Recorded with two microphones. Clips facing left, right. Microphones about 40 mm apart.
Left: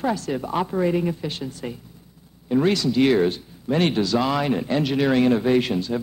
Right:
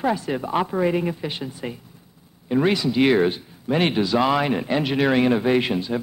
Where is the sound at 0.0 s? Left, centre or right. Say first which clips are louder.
Right 1 dB; centre.